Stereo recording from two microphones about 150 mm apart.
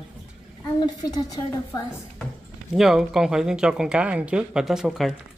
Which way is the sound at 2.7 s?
5° right (ahead or behind).